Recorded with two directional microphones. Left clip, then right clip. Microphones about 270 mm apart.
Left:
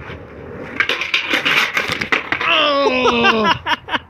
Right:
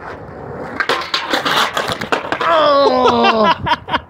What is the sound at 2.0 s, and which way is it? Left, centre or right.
Wail, centre.